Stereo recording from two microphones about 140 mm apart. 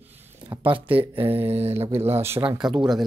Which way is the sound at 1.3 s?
45° right (ahead or behind).